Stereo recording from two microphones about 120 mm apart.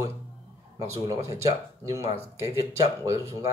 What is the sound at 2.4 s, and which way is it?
Speech, 25° right (ahead or behind).